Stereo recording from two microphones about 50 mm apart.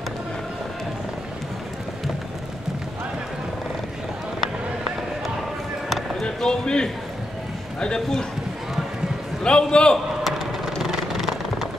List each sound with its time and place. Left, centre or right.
5.9 s basketball bounce: centre
6.2 s a man's voice: centre
9.4 s a man's voice: centre
10.2 s a sound: centre